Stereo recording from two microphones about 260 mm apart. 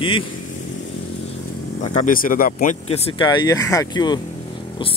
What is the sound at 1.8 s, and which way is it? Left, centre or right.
Speech, left.